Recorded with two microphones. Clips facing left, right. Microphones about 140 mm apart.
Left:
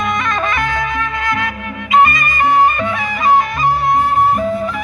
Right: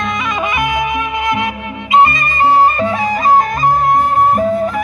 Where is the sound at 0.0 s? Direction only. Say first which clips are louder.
Even; 5° right (ahead or behind).